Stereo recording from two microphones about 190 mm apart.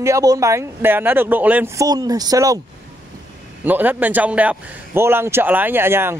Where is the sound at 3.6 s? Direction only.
10° right (ahead or behind).